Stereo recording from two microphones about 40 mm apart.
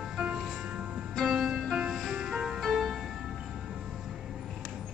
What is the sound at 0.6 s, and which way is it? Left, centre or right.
Music, right.